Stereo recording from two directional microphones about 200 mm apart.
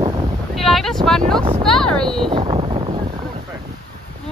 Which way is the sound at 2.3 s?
25° right (ahead or behind).